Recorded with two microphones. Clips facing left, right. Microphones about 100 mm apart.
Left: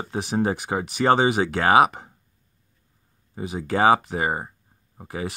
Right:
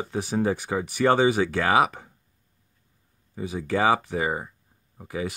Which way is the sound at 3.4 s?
65° left (ahead or behind).